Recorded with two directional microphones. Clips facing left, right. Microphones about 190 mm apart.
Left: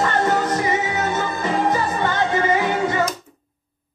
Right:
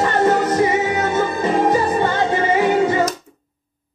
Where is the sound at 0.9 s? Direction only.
30° right (ahead or behind).